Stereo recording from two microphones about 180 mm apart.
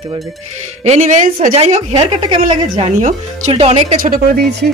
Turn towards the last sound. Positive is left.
turn(degrees=-50)  # may be behind; listen again after turning